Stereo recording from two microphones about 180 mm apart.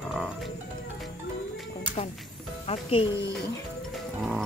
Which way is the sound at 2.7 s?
35° left (ahead or behind).